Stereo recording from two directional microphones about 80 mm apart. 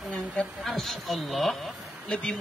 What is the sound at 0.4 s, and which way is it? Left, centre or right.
Speech, centre.